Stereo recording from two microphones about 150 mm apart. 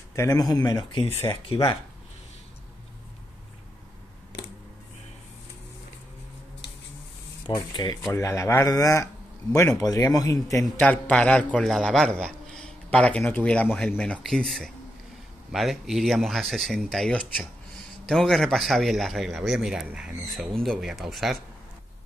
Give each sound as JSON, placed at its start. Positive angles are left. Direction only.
{"t": 0.1, "sound": "speech", "side_deg": 20}
{"t": 0.7, "sound": "speech", "side_deg": 35}
{"t": 7.4, "sound": "speech", "side_deg": 30}
{"t": 10.8, "sound": "a man's voice", "side_deg": 10}
{"t": 20.5, "sound": "speech", "side_deg": 5}